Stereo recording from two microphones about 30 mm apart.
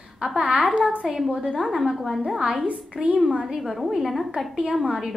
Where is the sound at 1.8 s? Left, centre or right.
Centre.